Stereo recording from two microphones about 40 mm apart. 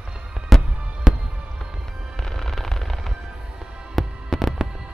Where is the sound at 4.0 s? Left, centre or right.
Centre.